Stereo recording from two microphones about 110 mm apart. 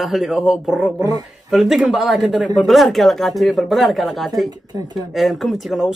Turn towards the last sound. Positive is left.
turn(degrees=0)  # may be behind; listen again after turning